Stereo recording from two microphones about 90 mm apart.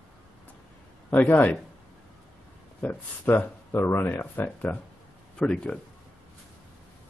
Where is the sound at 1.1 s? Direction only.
20° left (ahead or behind).